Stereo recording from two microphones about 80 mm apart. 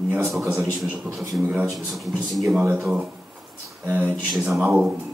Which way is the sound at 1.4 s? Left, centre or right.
Centre.